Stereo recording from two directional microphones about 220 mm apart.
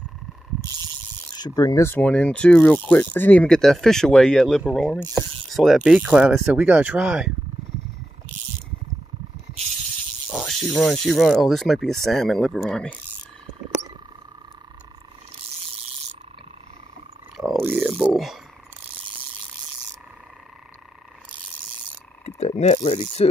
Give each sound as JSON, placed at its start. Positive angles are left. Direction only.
{"t": 1.3, "sound": "speech", "side_deg": 15}
{"t": 10.3, "sound": "speech", "side_deg": 0}
{"t": 17.6, "sound": "speech", "side_deg": -10}
{"t": 22.2, "sound": "a sound", "side_deg": 30}
{"t": 22.8, "sound": "mechanisms", "side_deg": 25}